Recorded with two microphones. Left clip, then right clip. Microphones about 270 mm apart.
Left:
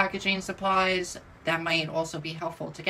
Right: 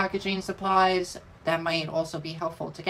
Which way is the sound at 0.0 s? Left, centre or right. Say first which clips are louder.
Left 2 dB; centre.